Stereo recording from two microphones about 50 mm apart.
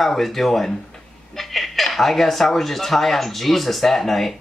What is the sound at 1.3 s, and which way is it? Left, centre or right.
Speech, centre.